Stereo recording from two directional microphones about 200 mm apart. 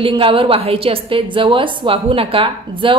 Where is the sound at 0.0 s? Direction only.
25° right (ahead or behind).